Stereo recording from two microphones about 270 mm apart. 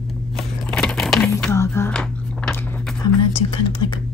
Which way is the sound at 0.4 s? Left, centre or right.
Centre.